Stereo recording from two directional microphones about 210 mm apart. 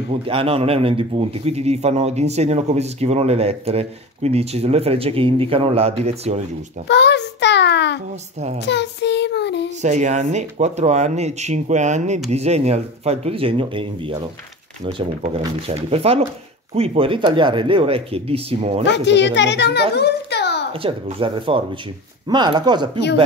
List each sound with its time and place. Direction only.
0.1 s a man's voice: 25° right (ahead or behind)
6.9 s a child's voice: 55° left (ahead or behind)
9.8 s speech: 35° right (ahead or behind)
15.2 s a man's voice: 30° right (ahead or behind)
18.9 s a child's voice: 55° left (ahead or behind)
20.0 s a sound: 50° left (ahead or behind)
20.7 s a man's voice: 25° right (ahead or behind)